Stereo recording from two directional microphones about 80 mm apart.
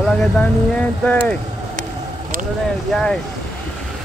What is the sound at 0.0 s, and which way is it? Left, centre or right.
Speech, centre.